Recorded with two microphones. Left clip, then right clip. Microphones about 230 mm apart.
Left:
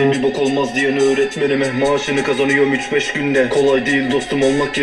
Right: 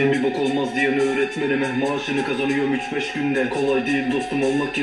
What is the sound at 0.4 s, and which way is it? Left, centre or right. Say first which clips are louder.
Speech: left 4 dB; left.